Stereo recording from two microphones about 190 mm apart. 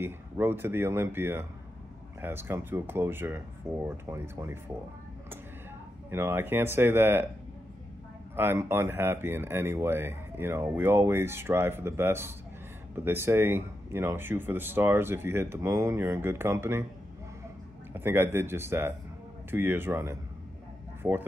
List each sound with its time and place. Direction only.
0.0 s speech: 10° right (ahead or behind)
6.0 s speech: 10° right (ahead or behind)
8.4 s speech: 10° right (ahead or behind)
17.9 s speech: 10° right (ahead or behind)